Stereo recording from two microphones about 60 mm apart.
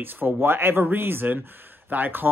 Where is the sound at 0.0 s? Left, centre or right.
Right.